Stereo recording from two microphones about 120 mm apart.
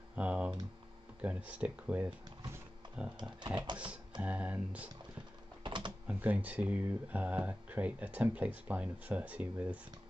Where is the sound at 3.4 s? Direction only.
40° right (ahead or behind).